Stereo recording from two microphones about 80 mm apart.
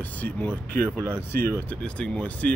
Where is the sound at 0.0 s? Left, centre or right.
Centre.